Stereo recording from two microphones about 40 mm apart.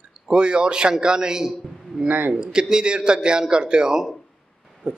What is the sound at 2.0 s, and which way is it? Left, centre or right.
Speech, right.